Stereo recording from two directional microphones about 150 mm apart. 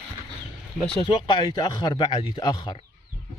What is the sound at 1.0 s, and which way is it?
Speech, 35° left (ahead or behind).